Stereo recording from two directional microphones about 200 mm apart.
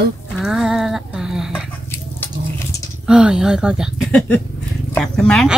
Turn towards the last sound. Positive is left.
turn(degrees=5)  # may be behind; listen again after turning